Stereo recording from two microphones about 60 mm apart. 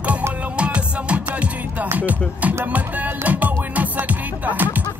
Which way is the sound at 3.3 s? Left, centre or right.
Right.